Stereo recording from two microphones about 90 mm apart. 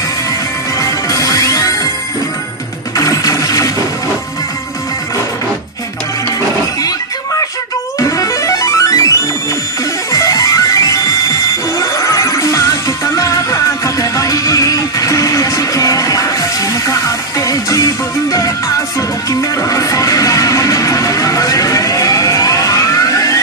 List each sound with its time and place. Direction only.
0.7 s music: 40° left (ahead or behind)
3.0 s music: 40° left (ahead or behind)
8.0 s music: 35° left (ahead or behind)
10.1 s music: 40° left (ahead or behind)
19.5 s music: 40° left (ahead or behind)